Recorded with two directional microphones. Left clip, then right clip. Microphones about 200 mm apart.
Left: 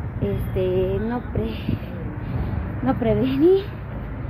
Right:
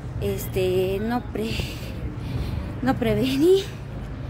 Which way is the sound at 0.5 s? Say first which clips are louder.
Left 1 dB; 25° right (ahead or behind).